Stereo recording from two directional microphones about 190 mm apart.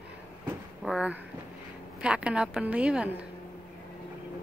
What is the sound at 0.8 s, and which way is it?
A woman's voice, 5° right (ahead or behind).